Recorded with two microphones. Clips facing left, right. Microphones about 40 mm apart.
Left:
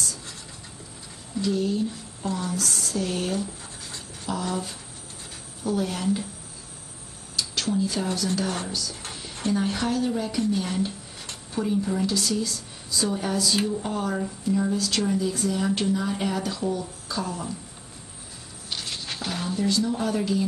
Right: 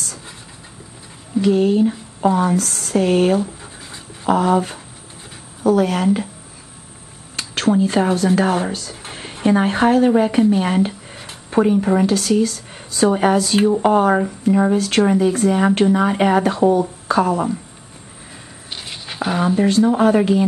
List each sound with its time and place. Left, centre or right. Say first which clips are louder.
1.4 s speech: right 10 dB; right
7.3 s speech: right 9 dB; right
18.7 s a sound: right 2 dB; right
19.5 s speech: right 9 dB; right